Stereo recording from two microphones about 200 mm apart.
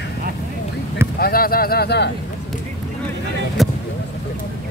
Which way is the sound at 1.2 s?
50° left (ahead or behind).